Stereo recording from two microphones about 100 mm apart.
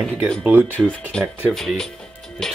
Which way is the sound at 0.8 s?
10° left (ahead or behind).